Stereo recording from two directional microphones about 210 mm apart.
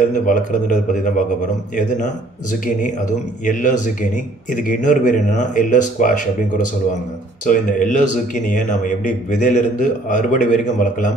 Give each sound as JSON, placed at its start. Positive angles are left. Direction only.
{"t": 0.1, "sound": "a man's voice", "side_deg": 40}
{"t": 3.4, "sound": "a man's voice", "side_deg": 35}
{"t": 7.4, "sound": "a man's voice", "side_deg": 40}